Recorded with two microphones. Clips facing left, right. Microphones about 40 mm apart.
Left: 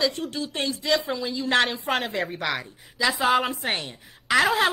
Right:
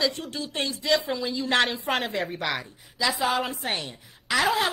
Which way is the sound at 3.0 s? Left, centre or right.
Left.